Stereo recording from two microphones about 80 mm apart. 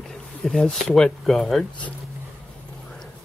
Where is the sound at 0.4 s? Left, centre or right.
Centre.